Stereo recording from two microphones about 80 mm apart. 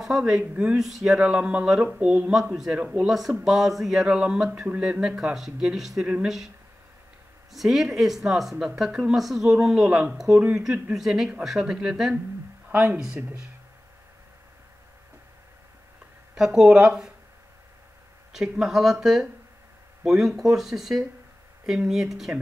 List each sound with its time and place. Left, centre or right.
0.4 s speech: centre
0.7 s a man's voice: centre
7.5 s a man's voice: centre
16.3 s speech: centre
18.3 s a man's voice: centre